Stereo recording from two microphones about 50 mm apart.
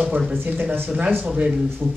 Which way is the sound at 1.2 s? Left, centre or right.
Centre.